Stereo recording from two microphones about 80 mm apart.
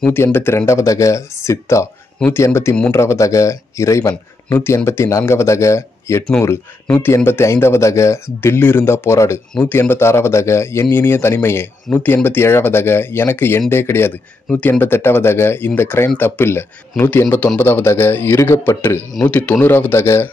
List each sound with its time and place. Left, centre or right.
0.1 s a man's voice: left
19.2 s speech: centre